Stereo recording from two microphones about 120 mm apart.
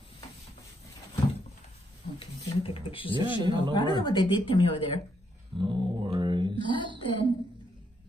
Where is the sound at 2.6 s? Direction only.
50° left (ahead or behind).